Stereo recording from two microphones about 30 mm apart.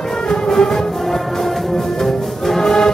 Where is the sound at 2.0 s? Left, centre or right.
Centre.